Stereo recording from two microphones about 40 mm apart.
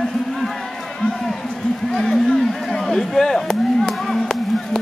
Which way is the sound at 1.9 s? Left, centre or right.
Centre.